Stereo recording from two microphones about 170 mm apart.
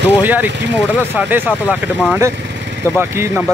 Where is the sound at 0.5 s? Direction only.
90° right.